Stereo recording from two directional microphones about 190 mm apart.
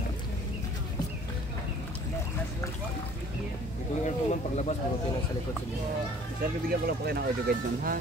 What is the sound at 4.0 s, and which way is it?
Speech, 35° left (ahead or behind).